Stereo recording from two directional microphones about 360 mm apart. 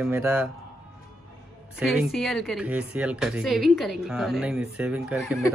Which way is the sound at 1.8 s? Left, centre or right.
Centre.